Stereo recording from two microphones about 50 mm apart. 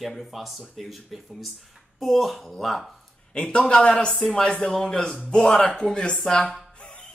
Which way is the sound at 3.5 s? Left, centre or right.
Centre.